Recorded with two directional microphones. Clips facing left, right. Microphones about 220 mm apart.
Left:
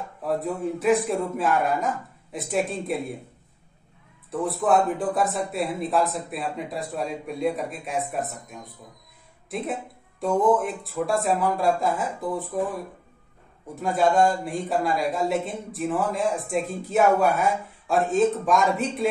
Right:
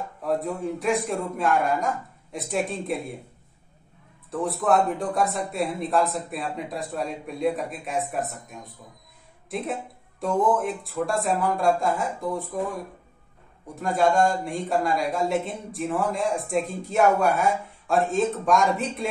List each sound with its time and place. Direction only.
0.2 s speech: centre (ahead or behind)
4.3 s speech: centre (ahead or behind)
13.7 s speech: centre (ahead or behind)